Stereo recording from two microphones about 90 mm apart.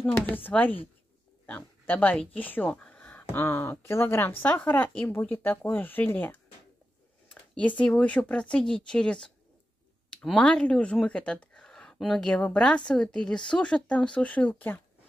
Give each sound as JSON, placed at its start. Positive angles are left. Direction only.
{"t": 0.0, "sound": "speech", "side_deg": 20}
{"t": 7.5, "sound": "speech", "side_deg": 15}